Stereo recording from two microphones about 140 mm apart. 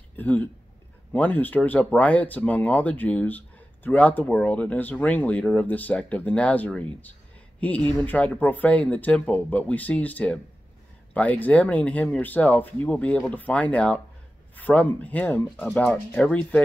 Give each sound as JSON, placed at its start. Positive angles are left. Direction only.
{"t": 0.1, "sound": "speech", "side_deg": 10}